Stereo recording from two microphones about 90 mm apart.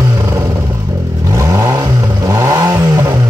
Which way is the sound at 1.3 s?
35° right (ahead or behind).